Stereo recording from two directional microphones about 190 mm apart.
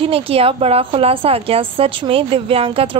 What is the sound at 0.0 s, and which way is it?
A woman's voice, 30° right (ahead or behind).